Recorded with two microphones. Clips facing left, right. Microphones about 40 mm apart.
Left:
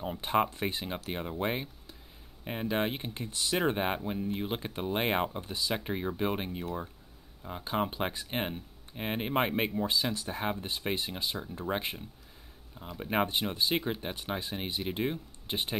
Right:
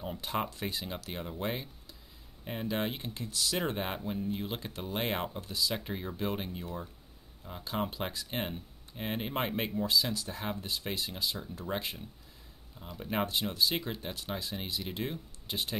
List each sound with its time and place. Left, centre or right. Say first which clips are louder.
0.2 s speech: left 7 dB; left